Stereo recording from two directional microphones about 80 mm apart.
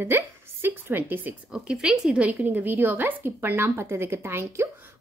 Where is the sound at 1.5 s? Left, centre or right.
Centre.